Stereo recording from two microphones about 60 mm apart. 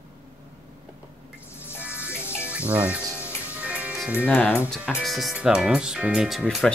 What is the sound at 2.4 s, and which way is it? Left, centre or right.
Speech, right.